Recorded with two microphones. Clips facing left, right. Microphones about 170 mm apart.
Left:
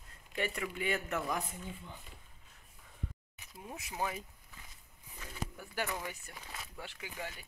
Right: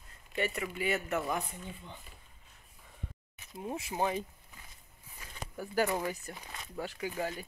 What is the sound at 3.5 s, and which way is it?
Speech, 30° right (ahead or behind).